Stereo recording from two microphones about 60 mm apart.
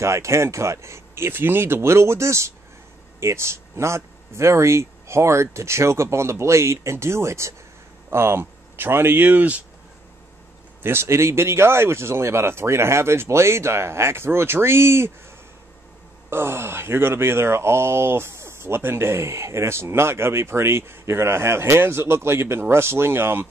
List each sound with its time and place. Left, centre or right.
0.0 s speech: right
10.8 s speech: right
16.3 s speech: right